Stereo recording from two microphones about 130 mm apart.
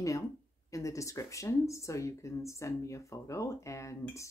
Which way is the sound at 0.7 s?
25° left (ahead or behind).